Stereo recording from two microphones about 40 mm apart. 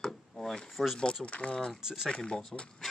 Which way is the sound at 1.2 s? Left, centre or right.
Left.